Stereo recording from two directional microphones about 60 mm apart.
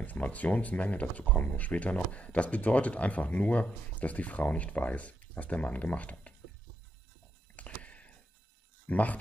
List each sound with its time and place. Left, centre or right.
0.0 s speech: left
7.5 s a sound: left
8.8 s speech: left